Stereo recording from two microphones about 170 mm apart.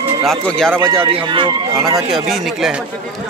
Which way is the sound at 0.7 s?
15° right (ahead or behind).